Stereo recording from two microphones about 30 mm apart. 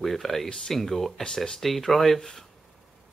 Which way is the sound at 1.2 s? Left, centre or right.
Centre.